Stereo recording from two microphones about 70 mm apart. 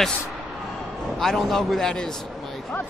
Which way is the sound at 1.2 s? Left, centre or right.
Centre.